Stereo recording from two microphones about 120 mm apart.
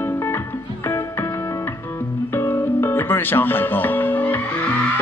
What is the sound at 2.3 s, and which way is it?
Music, 20° left (ahead or behind).